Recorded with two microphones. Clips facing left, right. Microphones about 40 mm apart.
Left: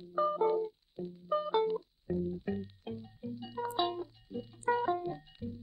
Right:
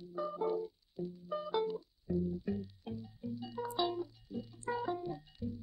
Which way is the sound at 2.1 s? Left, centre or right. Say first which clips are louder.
Left 1 dB; left.